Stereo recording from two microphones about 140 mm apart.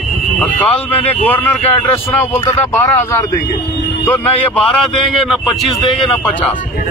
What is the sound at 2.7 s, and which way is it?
A man's voice, 20° left (ahead or behind).